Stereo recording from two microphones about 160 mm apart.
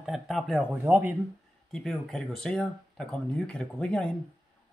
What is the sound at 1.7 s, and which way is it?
Speech, 5° left (ahead or behind).